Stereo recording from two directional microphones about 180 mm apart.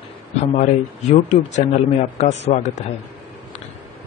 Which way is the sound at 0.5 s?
40° left (ahead or behind).